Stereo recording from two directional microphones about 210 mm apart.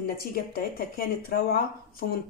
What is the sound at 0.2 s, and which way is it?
Speech, 45° left (ahead or behind).